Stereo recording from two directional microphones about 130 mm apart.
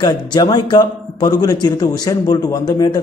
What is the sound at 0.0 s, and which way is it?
Speech, 30° left (ahead or behind).